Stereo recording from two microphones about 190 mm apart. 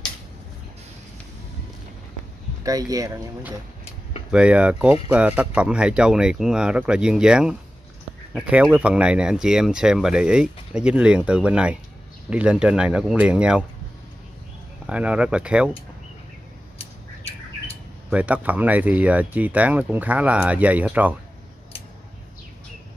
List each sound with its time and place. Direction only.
2.6 s speech: 20° right (ahead or behind)
4.3 s speech: 5° right (ahead or behind)
14.9 s speech: 5° right (ahead or behind)
18.1 s speech: 5° right (ahead or behind)